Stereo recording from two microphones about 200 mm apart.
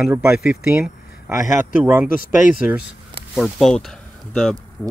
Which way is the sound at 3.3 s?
Centre (ahead or behind).